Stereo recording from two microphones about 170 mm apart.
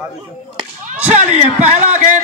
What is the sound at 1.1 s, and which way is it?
Speech, 45° right (ahead or behind).